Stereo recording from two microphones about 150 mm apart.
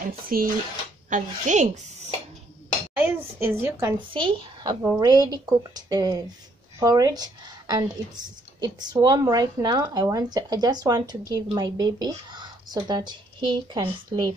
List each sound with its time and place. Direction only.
0.0 s speech: 70° right (ahead or behind)
1.1 s a woman's voice: 55° right (ahead or behind)
3.0 s a child's voice: 15° right (ahead or behind)
4.1 s a woman's voice: 35° right (ahead or behind)